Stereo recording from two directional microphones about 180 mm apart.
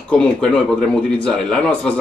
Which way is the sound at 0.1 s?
5° left (ahead or behind).